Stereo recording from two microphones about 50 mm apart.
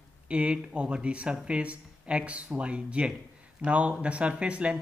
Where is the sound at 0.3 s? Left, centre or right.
Right.